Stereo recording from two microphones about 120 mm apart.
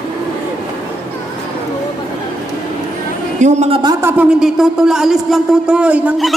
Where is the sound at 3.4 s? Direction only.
70° right (ahead or behind).